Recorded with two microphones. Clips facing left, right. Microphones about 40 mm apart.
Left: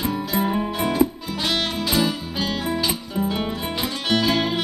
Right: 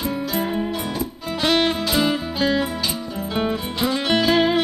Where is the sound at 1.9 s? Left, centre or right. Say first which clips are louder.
Right 2 dB; right.